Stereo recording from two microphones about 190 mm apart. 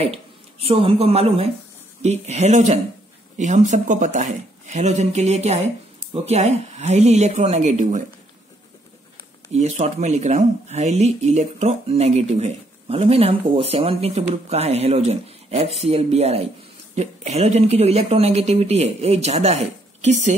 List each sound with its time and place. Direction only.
0.0 s speech: 30° right (ahead or behind)
9.5 s speech: 35° right (ahead or behind)